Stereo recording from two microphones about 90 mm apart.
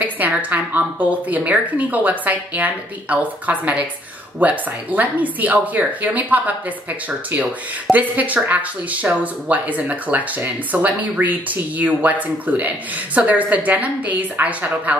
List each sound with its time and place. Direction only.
0.0 s a woman's voice: 20° right (ahead or behind)